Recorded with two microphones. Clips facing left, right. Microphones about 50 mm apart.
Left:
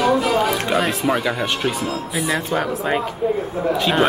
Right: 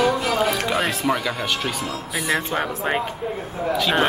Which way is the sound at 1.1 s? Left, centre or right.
Centre.